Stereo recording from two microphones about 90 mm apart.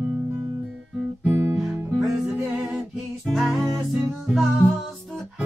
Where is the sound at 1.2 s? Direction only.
20° right (ahead or behind).